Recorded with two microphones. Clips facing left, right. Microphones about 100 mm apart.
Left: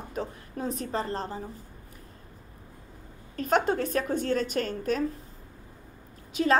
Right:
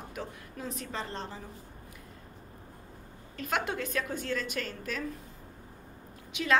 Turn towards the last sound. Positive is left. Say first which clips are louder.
# left 4 dB
turn(degrees=35)  # may be behind; listen again after turning